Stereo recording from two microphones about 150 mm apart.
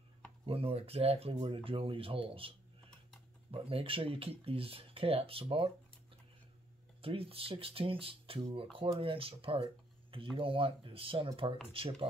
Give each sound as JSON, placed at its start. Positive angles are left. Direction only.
{"t": 0.5, "sound": "speech", "side_deg": -40}
{"t": 3.5, "sound": "speech", "side_deg": -40}
{"t": 7.0, "sound": "speech", "side_deg": -40}